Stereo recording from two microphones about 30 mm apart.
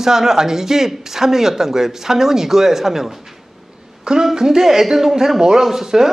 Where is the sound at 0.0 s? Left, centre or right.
Centre.